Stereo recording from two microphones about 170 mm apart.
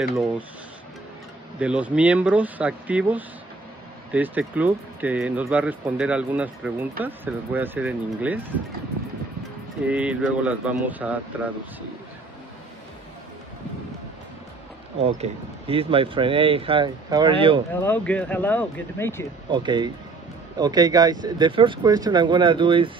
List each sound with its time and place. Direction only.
1.6 s speech: 10° right (ahead or behind)
9.8 s speech: 5° right (ahead or behind)
15.0 s speech: 40° right (ahead or behind)
17.7 s speech: 10° left (ahead or behind)
19.5 s speech: 25° right (ahead or behind)